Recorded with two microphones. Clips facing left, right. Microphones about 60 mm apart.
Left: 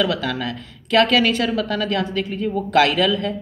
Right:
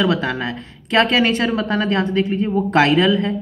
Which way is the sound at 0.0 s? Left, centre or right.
Right.